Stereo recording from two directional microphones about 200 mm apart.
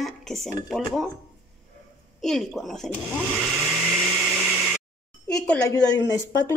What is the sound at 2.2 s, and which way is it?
Speech, centre (ahead or behind).